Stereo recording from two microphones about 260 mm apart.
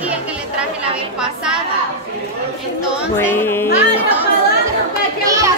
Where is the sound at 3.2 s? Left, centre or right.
Centre.